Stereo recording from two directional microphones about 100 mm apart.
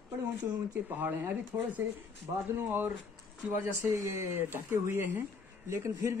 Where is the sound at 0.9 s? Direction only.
20° right (ahead or behind).